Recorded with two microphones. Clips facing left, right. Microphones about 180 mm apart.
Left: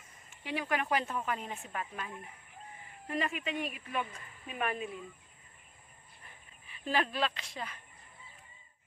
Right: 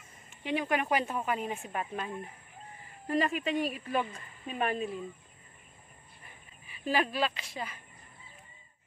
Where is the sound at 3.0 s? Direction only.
40° right (ahead or behind).